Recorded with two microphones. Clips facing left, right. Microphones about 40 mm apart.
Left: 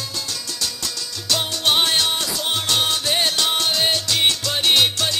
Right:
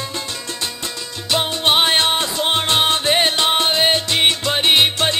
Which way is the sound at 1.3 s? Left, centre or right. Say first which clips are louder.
Right 3 dB; right.